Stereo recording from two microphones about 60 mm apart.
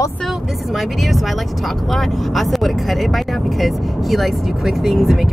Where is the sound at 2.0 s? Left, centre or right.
Centre.